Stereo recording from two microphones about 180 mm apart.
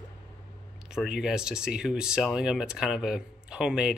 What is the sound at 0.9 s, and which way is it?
Speech, 5° right (ahead or behind).